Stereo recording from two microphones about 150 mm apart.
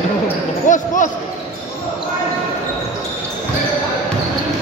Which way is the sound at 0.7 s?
60° left (ahead or behind).